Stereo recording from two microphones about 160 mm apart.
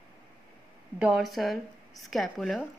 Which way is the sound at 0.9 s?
5° right (ahead or behind).